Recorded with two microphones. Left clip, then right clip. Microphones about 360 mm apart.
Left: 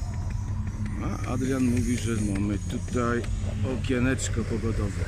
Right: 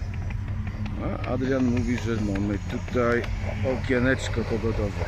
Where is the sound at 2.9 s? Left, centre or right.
Centre.